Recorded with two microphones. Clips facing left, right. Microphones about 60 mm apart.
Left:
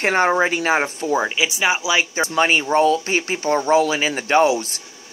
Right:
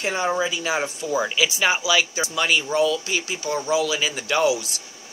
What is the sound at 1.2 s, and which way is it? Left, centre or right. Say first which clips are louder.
Speech: left 2 dB; left.